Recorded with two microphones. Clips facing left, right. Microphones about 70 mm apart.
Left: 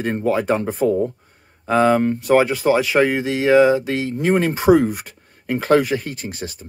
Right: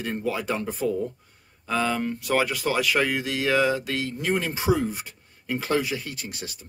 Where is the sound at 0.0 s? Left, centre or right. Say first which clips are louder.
Left 8 dB; left.